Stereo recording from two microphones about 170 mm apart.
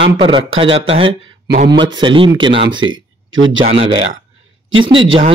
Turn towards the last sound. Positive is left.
turn(degrees=-30)  # may be behind; listen again after turning